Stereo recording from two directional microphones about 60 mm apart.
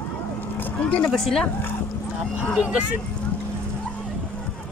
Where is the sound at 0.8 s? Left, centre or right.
Centre.